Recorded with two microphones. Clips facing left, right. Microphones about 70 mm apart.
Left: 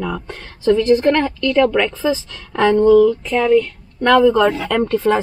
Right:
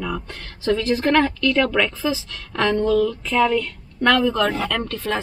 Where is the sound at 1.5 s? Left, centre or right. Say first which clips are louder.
Left 5 dB; centre.